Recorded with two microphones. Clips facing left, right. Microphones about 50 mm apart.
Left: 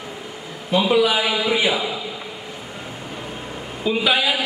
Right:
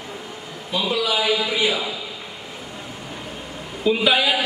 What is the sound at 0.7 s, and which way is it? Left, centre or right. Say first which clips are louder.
A man's voice: left 5 dB; left.